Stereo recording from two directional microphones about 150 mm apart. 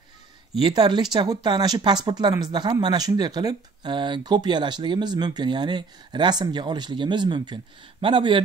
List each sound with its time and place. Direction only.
0.6 s speech: 30° right (ahead or behind)